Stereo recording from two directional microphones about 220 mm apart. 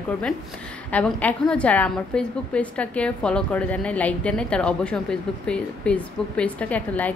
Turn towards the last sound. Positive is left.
turn(degrees=5)  # may be behind; listen again after turning